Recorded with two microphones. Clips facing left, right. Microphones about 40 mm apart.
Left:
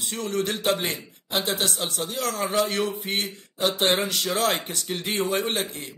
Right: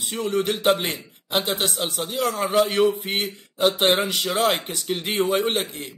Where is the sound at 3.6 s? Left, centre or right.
Centre.